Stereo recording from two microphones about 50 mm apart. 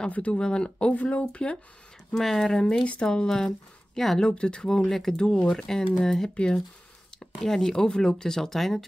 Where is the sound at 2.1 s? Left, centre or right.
Centre.